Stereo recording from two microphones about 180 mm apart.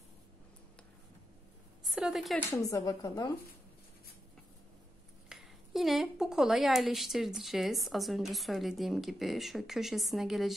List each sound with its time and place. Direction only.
1.9 s a woman's voice: 5° right (ahead or behind)
2.3 s speech: 15° left (ahead or behind)
5.3 s a woman's voice: centre (ahead or behind)